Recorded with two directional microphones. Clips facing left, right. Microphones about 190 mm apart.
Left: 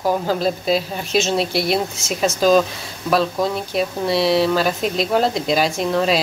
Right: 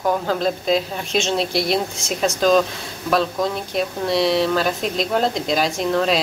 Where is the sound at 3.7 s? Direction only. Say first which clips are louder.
Left 1 dB; 5° left (ahead or behind).